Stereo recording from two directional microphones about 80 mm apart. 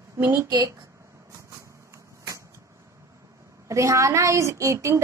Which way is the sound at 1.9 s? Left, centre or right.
Right.